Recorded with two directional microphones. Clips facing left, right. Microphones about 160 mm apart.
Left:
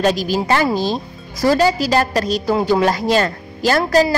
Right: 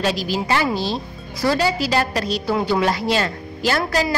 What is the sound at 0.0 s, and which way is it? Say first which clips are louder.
A woman's voice: left 5 dB; 45° left (ahead or behind).